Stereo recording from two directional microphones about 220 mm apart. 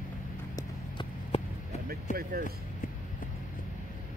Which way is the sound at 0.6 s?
20° left (ahead or behind).